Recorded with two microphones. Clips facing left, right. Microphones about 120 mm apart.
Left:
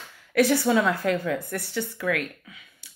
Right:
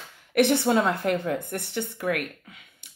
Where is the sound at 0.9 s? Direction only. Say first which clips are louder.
Even; 25° right (ahead or behind).